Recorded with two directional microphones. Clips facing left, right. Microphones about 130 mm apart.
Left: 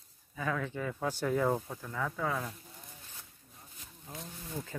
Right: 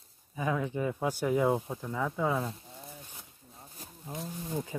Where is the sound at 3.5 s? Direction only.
35° right (ahead or behind).